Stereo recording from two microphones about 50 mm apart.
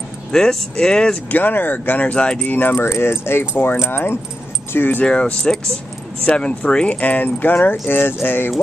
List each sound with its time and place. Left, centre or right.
0.3 s speech: centre
1.3 s speech: left
2.8 s speech: left
5.0 s speech: centre
7.0 s speech: left